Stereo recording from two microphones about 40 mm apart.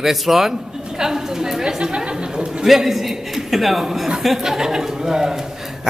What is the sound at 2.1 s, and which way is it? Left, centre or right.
Chatter, right.